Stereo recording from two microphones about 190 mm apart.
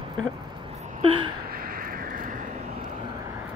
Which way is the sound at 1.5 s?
50° right (ahead or behind).